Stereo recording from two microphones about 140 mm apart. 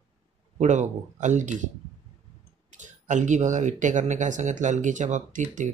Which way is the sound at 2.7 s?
60° right (ahead or behind).